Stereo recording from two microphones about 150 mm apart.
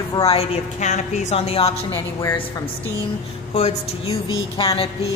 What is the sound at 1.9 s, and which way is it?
Speech, 20° left (ahead or behind).